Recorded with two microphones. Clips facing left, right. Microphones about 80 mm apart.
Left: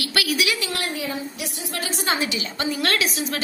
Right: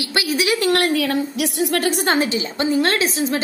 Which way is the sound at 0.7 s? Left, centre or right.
Right.